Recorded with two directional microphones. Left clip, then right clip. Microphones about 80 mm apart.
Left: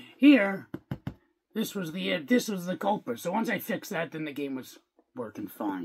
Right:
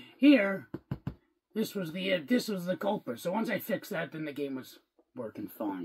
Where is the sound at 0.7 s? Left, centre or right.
Left.